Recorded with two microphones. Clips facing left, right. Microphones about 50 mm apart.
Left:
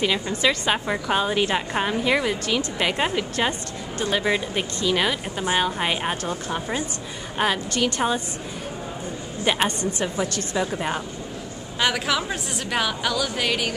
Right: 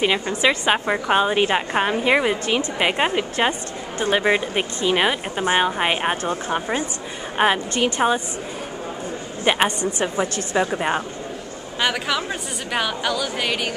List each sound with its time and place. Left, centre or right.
0.0 s a woman's voice: right
9.4 s a woman's voice: right
11.8 s a woman's voice: centre